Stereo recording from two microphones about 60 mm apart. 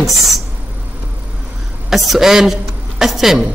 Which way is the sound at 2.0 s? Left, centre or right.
Centre.